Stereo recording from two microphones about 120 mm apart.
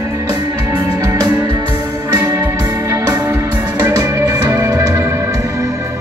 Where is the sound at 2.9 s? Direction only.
25° right (ahead or behind).